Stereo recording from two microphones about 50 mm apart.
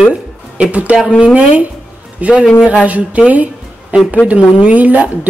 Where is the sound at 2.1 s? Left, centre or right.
Right.